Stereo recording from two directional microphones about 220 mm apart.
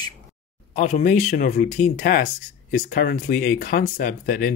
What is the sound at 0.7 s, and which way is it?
Speech, 35° left (ahead or behind).